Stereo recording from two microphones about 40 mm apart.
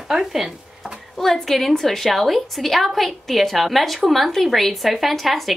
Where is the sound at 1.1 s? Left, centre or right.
Centre.